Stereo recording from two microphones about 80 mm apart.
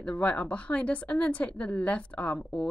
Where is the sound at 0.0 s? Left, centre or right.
Centre.